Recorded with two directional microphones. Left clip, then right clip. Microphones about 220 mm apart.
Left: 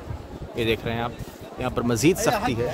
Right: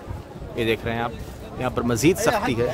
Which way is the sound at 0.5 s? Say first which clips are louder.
Right 1 dB; centre (ahead or behind).